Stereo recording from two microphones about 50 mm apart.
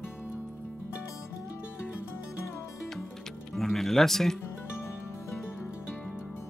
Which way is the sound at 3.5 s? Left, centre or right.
Centre.